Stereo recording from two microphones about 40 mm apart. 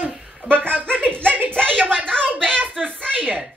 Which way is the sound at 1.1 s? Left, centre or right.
Left.